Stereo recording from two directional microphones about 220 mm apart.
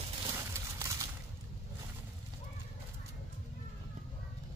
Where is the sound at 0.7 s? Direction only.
15° right (ahead or behind).